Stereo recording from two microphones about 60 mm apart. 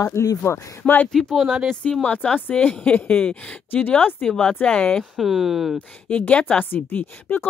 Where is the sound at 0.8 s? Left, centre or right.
Left.